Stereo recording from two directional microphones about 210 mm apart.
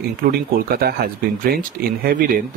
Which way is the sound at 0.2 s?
45° right (ahead or behind).